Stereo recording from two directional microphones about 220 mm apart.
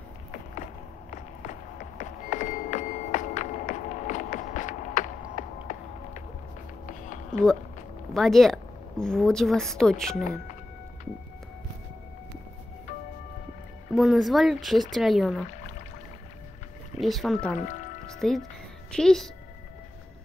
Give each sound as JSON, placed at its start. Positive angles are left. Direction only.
{"t": 1.1, "sound": "a sound", "side_deg": 35}
{"t": 7.3, "sound": "speech", "side_deg": 5}
{"t": 13.9, "sound": "speech", "side_deg": 0}
{"t": 17.0, "sound": "speech", "side_deg": 0}
{"t": 17.6, "sound": "music", "side_deg": 35}
{"t": 18.2, "sound": "speech", "side_deg": 0}